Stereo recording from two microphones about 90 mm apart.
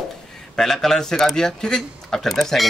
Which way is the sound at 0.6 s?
5° left (ahead or behind).